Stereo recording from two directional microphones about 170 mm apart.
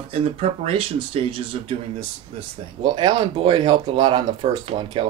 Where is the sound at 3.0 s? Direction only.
30° right (ahead or behind).